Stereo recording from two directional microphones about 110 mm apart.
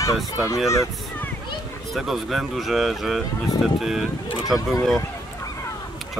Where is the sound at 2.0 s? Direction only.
Centre (ahead or behind).